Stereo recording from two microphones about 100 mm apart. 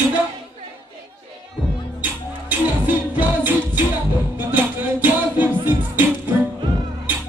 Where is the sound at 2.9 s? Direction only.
20° right (ahead or behind).